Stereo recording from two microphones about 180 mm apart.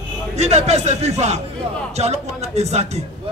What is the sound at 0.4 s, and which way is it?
A man's voice, 35° right (ahead or behind).